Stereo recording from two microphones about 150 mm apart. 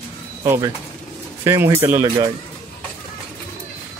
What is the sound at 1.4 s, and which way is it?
Speech, 15° right (ahead or behind).